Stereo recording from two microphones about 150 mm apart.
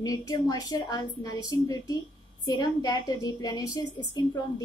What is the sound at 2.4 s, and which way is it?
A woman's voice, 25° left (ahead or behind).